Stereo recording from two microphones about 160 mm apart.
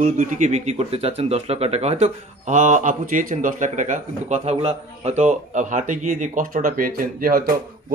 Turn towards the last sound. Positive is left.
turn(degrees=-65)  # may be behind; listen again after turning